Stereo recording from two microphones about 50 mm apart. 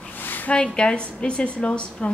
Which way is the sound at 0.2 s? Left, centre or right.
Left.